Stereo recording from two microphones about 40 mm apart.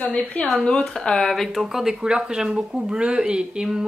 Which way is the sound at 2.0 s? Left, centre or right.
Centre.